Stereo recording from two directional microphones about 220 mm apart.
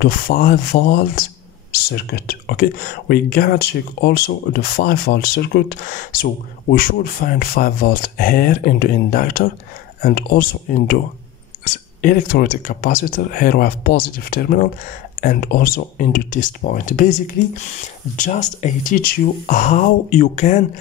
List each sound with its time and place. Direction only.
0.0 s speech: 45° left (ahead or behind)
12.0 s speech: 40° left (ahead or behind)